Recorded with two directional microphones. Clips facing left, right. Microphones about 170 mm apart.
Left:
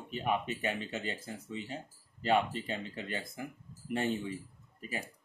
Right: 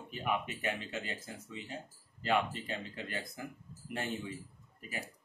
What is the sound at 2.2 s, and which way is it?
Speech, 30° left (ahead or behind).